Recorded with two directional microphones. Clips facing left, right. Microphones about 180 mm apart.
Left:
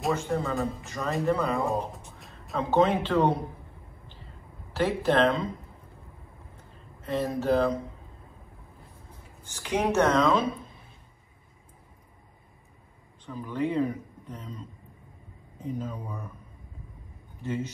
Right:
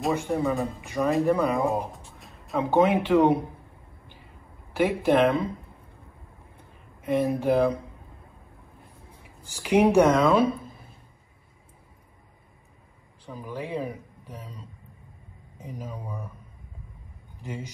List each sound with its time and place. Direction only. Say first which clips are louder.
0.1 s speech: right 2 dB; 15° right (ahead or behind)
1.7 s music: right 1 dB; centre (ahead or behind)
2.7 s speech: right 3 dB; 10° right (ahead or behind)
4.7 s speech: right 3 dB; 10° right (ahead or behind)
7.0 s speech: right 4 dB; 10° right (ahead or behind)
9.5 s speech: right 7 dB; 10° right (ahead or behind)
13.2 s speech: left 5 dB; 10° right (ahead or behind)
15.8 s speech: left 1 dB; 10° right (ahead or behind)
17.4 s a man's voice: left 5 dB; 15° right (ahead or behind)